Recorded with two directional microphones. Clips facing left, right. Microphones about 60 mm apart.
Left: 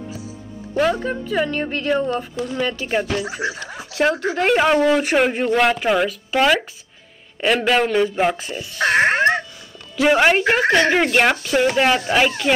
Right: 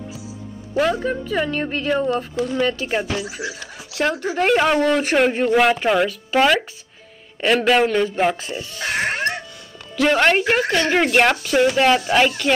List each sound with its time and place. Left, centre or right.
0.7 s speech: centre
3.2 s speech: left
4.1 s speech: centre
8.7 s dog: left
9.9 s a woman's voice: centre
10.6 s speech: left
10.9 s speech: centre